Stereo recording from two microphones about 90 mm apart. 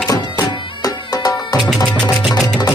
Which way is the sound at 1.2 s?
45° left (ahead or behind).